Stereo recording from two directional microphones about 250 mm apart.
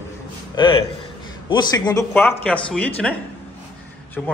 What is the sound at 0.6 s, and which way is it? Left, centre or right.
Speech, centre.